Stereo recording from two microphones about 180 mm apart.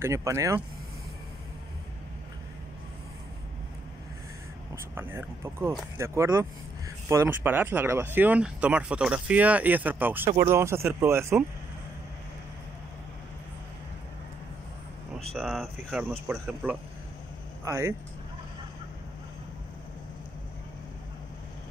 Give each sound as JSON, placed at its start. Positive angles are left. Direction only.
{"t": 0.0, "sound": "speech", "side_deg": -15}
{"t": 4.9, "sound": "speech", "side_deg": -15}
{"t": 15.3, "sound": "speech", "side_deg": 0}